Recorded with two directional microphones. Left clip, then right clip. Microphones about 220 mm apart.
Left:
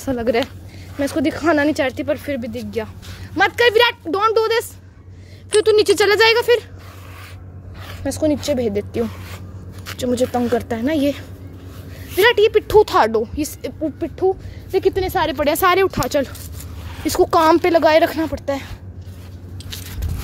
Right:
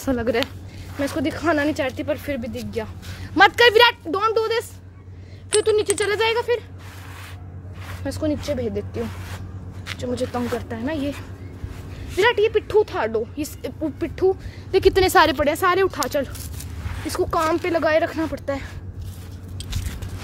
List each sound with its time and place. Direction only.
0.2 s speech: 10° left (ahead or behind)
1.0 s speech: 30° left (ahead or behind)
3.3 s speech: 5° right (ahead or behind)
4.1 s speech: 35° left (ahead or behind)
8.0 s speech: 20° left (ahead or behind)
13.9 s speech: 5° left (ahead or behind); by 15.3 s 15° right (ahead or behind)
15.3 s speech: 10° left (ahead or behind)